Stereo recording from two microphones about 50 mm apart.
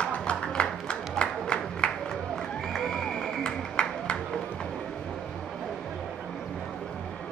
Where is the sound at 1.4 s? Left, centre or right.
Centre.